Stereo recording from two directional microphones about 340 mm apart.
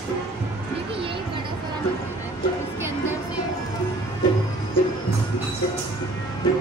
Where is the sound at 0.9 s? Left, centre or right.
Centre.